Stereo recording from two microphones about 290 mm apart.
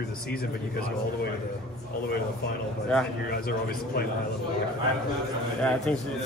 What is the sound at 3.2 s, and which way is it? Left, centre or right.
Speech, left.